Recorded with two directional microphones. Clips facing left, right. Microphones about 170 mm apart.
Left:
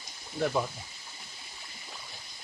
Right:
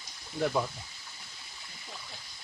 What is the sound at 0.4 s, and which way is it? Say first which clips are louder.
Speech: even; 5° left (ahead or behind).